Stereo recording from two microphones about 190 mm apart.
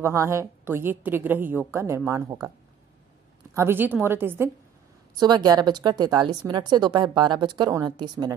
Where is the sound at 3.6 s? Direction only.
10° right (ahead or behind).